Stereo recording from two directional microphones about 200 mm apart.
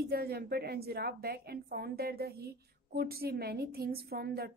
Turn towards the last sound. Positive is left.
turn(degrees=-50)  # may be behind; listen again after turning